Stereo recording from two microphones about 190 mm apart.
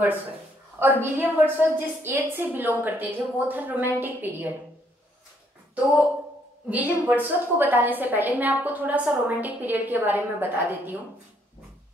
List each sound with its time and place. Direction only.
0.7 s a woman's voice: 10° right (ahead or behind)
6.7 s a woman's voice: 10° right (ahead or behind)